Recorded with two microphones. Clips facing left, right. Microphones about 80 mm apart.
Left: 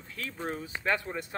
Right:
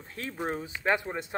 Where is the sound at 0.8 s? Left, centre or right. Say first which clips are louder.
Right 3 dB; right.